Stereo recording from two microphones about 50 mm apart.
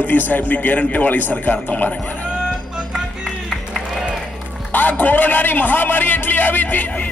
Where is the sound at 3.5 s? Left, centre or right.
Centre.